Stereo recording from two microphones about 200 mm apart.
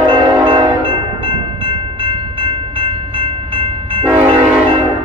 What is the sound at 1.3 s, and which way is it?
Train, 25° right (ahead or behind).